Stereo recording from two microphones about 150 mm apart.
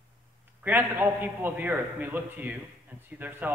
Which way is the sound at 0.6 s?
10° right (ahead or behind).